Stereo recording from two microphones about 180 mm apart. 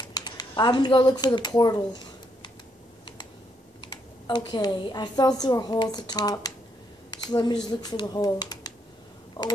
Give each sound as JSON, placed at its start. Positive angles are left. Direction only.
{"t": 0.1, "sound": "speech", "side_deg": 20}
{"t": 3.9, "sound": "speech", "side_deg": 25}
{"t": 9.4, "sound": "a sound", "side_deg": 20}